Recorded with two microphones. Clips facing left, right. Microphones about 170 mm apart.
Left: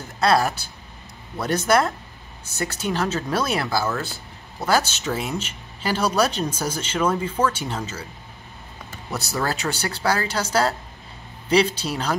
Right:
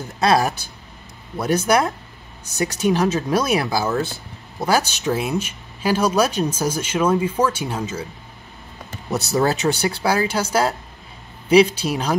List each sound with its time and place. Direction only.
0.2 s speech: 15° right (ahead or behind)
9.1 s speech: 20° right (ahead or behind)